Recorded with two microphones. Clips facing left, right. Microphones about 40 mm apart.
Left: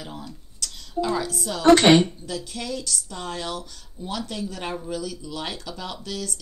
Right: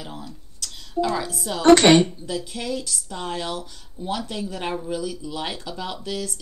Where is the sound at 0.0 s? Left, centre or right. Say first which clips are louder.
Right 1 dB; centre.